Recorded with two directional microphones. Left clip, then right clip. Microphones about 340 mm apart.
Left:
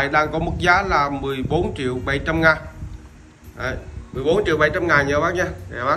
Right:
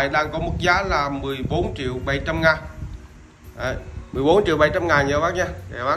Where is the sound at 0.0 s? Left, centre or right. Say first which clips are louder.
Left 2 dB; centre.